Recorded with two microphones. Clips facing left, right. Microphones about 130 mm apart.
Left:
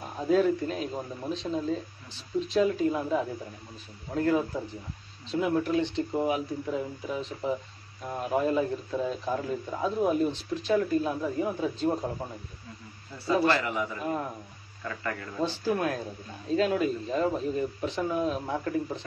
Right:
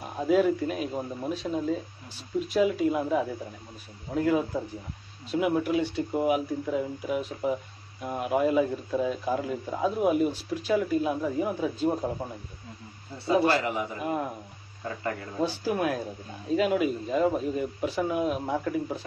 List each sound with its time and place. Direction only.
0.3 s a man's voice: 10° right (ahead or behind)
13.2 s a man's voice: 20° right (ahead or behind)
14.8 s a man's voice: 25° right (ahead or behind)
15.4 s a man's voice: 10° right (ahead or behind)